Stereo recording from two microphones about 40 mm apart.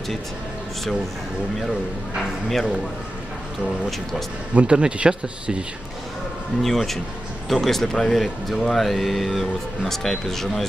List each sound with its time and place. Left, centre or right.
4.6 s speech: right
6.6 s speech: centre